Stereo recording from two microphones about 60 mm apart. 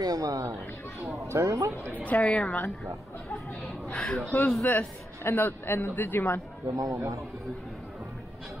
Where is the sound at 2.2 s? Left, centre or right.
Centre.